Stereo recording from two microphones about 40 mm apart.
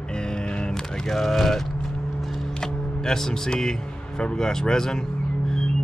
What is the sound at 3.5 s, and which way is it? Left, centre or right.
Speech, centre.